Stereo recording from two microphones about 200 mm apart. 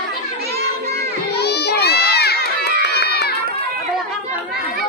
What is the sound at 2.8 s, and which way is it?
Run, 55° left (ahead or behind).